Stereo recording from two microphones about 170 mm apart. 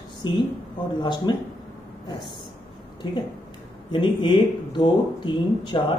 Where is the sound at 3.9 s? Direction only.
30° left (ahead or behind).